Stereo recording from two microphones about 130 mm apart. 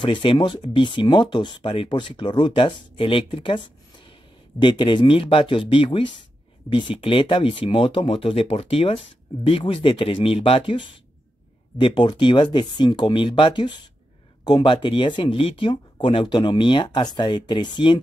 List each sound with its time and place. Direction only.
0.0 s speech: 40° left (ahead or behind)